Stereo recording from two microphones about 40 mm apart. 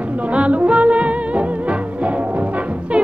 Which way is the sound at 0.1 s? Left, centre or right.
Right.